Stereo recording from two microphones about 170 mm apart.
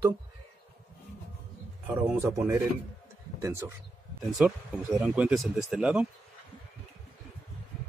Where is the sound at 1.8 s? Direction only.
10° right (ahead or behind).